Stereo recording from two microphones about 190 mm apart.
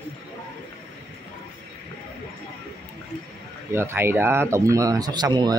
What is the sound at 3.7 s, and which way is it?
Speech, 15° right (ahead or behind).